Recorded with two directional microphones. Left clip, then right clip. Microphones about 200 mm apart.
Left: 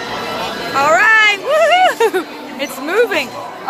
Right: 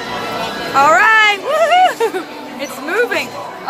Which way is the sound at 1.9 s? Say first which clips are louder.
Left 3 dB; 30° left (ahead or behind).